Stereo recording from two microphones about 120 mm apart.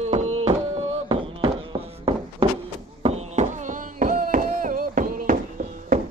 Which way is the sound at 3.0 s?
70° right (ahead or behind).